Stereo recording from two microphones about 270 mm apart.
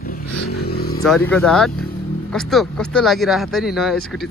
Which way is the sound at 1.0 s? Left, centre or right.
Centre.